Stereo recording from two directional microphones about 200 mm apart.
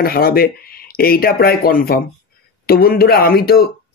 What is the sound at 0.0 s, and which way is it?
Speech, 50° left (ahead or behind).